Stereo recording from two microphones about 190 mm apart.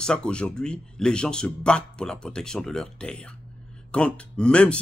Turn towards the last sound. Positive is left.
turn(degrees=5)  # may be behind; listen again after turning